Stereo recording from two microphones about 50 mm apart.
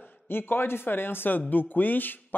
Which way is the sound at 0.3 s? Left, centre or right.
Left.